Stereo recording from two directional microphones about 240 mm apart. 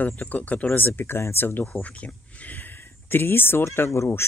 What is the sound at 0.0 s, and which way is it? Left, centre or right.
Speech, centre.